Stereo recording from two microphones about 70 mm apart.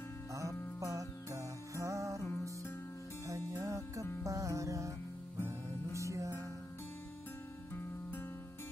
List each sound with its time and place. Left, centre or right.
0.3 s music: right
5.9 s music: right